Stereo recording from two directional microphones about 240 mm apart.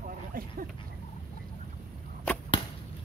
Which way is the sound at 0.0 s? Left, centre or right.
Right.